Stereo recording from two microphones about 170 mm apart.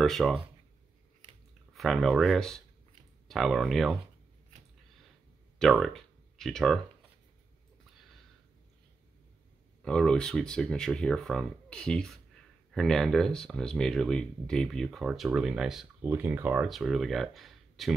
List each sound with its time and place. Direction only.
0.0 s speech: centre (ahead or behind)
1.7 s speech: centre (ahead or behind)
5.6 s speech: centre (ahead or behind)
9.8 s speech: 5° left (ahead or behind); by 16.6 s 10° right (ahead or behind)
16.6 s speech: centre (ahead or behind)